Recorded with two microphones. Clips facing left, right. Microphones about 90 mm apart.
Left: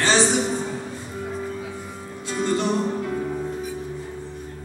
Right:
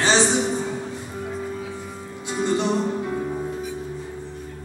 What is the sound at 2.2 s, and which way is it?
Music, 20° right (ahead or behind).